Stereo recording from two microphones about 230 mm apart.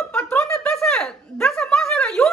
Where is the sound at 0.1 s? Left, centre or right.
Centre.